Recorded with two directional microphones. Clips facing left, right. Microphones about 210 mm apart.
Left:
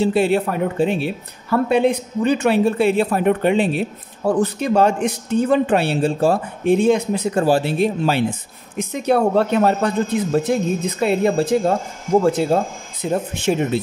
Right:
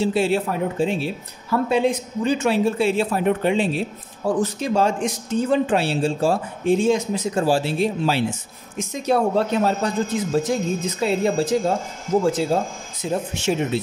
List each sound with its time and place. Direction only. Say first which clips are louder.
0.0 s speech: left 3 dB; 60° left (ahead or behind)